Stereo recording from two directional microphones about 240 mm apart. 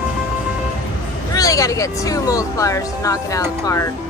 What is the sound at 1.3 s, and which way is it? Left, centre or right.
Speech, centre.